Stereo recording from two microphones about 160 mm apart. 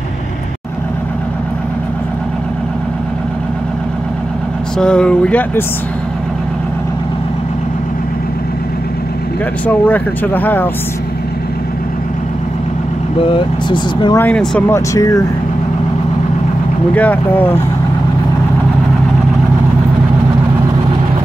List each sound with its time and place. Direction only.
4.7 s speech: 5° left (ahead or behind)
9.7 s speech: 10° left (ahead or behind)
13.2 s speech: 30° left (ahead or behind)
14.1 s speech: 10° left (ahead or behind)
14.7 s speech: 20° left (ahead or behind)
16.9 s speech: 10° left (ahead or behind)